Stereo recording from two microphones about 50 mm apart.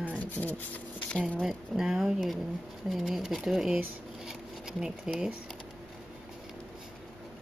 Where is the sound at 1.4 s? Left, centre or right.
Centre.